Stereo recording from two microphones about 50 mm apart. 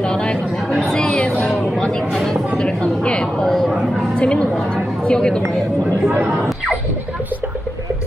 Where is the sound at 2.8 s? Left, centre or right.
Centre.